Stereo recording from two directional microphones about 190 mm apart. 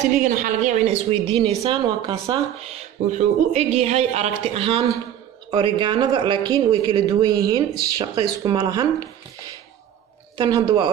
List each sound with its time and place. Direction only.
0.4 s a woman's voice: 40° right (ahead or behind); by 8.8 s 20° right (ahead or behind)
10.3 s speech: 25° right (ahead or behind)